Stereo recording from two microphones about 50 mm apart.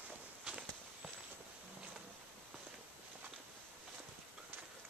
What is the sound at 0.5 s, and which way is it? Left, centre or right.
Walk, centre.